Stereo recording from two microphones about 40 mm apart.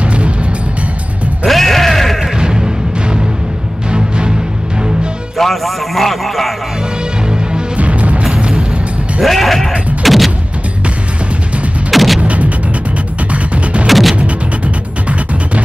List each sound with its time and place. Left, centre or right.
0.0 s music: right
1.5 s music: centre
2.3 s music: centre
5.4 s a sound: centre
7.2 s music: right
7.8 s music: right
8.2 s music: right
9.2 s sheep: centre
10.0 s a sound: centre
11.9 s artillery fire: centre
12.2 s music: right
13.8 s music: centre